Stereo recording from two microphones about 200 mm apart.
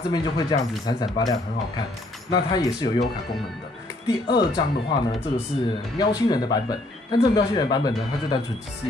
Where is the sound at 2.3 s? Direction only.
20° left (ahead or behind).